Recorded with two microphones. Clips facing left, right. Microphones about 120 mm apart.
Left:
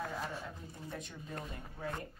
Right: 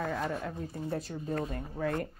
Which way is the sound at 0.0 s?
55° right (ahead or behind).